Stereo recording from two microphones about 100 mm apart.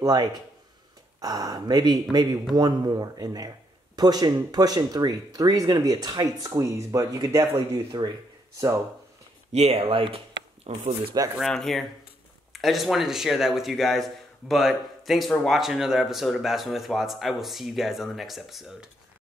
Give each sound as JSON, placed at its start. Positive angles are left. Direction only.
{"t": 0.0, "sound": "speech", "side_deg": -40}
{"t": 7.9, "sound": "speech", "side_deg": -50}
{"t": 8.5, "sound": "speech", "side_deg": -30}
{"t": 9.5, "sound": "speech", "side_deg": -90}
{"t": 11.4, "sound": "speech", "side_deg": 5}